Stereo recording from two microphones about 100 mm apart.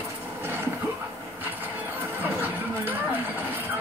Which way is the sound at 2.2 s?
20° right (ahead or behind).